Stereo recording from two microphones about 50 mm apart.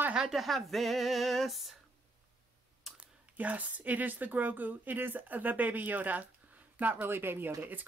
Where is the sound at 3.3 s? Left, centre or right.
Right.